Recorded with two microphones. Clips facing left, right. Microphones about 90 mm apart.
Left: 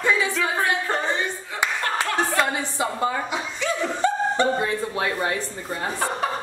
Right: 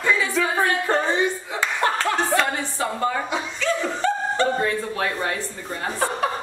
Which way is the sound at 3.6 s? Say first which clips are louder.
Even; 15° left (ahead or behind).